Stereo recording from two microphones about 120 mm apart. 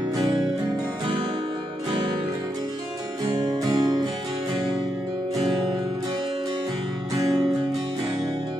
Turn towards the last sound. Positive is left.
turn(degrees=-30)  # may be behind; listen again after turning